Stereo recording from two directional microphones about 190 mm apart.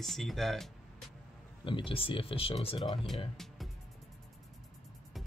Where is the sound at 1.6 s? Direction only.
25° left (ahead or behind).